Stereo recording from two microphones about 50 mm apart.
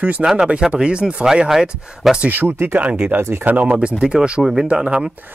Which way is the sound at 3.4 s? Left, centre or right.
Right.